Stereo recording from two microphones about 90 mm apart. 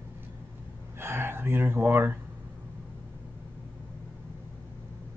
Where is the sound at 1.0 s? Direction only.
30° right (ahead or behind).